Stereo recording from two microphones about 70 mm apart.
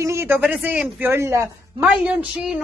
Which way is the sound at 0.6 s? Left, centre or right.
Right.